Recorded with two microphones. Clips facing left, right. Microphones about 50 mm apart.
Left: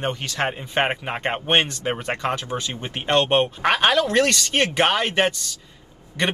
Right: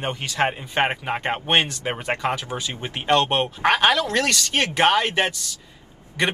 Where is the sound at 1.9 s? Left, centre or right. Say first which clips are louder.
Right 2 dB; centre.